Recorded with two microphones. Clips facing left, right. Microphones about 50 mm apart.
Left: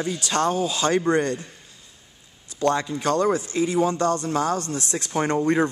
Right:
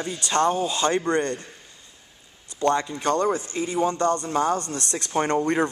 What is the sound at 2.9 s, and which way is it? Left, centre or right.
Speech, centre.